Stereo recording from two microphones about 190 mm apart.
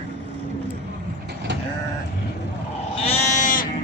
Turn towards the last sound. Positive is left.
turn(degrees=40)  # may be behind; listen again after turning